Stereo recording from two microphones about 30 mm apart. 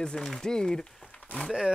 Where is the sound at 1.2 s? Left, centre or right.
Left.